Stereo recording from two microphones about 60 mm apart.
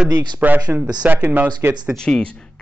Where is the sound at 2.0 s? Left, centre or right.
Centre.